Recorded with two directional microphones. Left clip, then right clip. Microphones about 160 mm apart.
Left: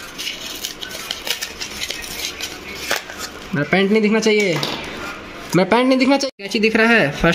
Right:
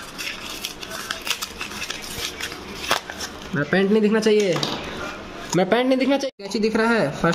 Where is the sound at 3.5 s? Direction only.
35° left (ahead or behind).